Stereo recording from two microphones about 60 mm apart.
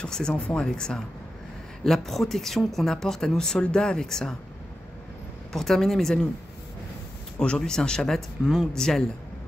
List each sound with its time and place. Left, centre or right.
0.0 s speech: centre
5.5 s speech: centre
7.3 s speech: centre
8.4 s speech: centre
8.7 s speech: centre